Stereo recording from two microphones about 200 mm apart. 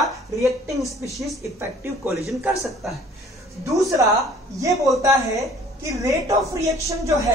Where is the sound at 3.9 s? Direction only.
15° right (ahead or behind).